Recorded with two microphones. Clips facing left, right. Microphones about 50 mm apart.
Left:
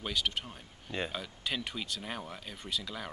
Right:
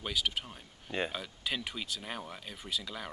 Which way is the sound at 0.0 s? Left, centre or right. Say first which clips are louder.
Even; centre.